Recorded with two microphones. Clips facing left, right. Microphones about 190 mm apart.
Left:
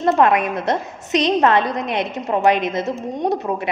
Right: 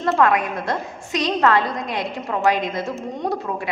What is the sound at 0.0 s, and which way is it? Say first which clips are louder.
A woman's voice: left 3 dB; 20° left (ahead or behind).